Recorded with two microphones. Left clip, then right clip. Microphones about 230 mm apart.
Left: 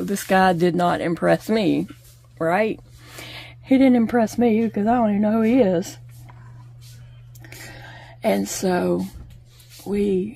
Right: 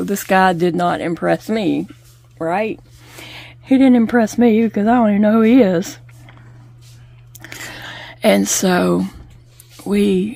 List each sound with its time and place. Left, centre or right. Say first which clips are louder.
0.0 s speech: right 4 dB; centre
7.3 s a sound: right 9 dB; right
9.8 s speech: right 5 dB; right